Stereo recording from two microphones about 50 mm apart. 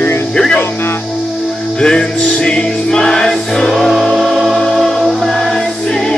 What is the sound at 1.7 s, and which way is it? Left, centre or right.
Music, centre.